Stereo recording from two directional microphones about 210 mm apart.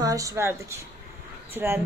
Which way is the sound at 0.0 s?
15° right (ahead or behind).